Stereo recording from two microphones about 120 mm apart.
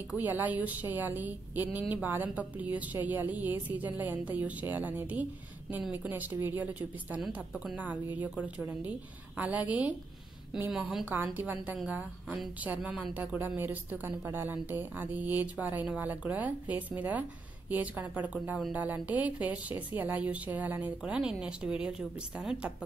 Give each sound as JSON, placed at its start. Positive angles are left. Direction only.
{"t": 0.1, "sound": "a woman's voice", "side_deg": -15}
{"t": 11.3, "sound": "a woman's voice", "side_deg": -15}